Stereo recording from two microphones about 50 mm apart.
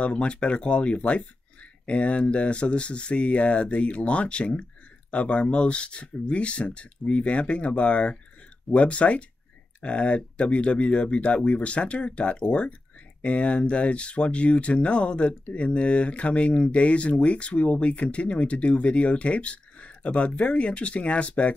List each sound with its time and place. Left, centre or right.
0.0 s speech: left